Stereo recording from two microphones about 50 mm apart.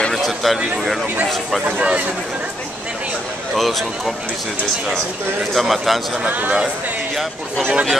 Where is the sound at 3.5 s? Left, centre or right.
Centre.